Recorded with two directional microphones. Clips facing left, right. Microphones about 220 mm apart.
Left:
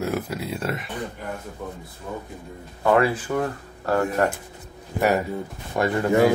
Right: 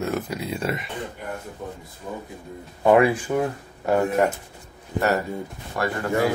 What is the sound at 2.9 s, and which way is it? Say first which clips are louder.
Speech: right 3 dB; 15° right (ahead or behind).